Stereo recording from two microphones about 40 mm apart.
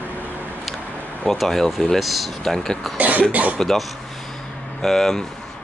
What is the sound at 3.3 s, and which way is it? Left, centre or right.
Speech, right.